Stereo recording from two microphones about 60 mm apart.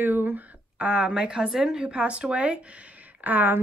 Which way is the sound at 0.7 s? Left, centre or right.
Centre.